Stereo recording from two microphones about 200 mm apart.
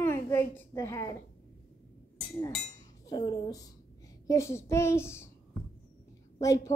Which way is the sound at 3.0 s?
20° left (ahead or behind).